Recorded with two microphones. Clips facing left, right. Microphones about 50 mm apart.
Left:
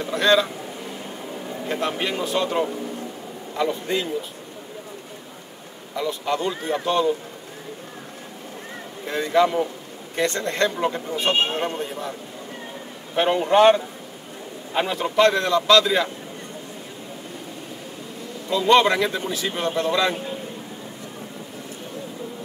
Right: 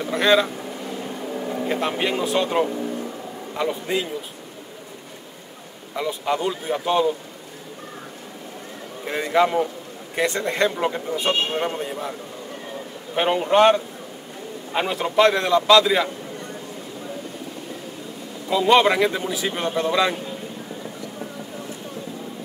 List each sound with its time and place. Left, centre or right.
0.1 s speech: centre
1.7 s speech: centre
3.5 s speech: centre
5.9 s speech: centre
9.0 s speech: centre
18.5 s speech: centre